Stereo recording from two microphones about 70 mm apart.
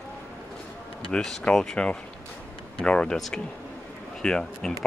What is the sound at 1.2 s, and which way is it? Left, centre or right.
Speech, centre.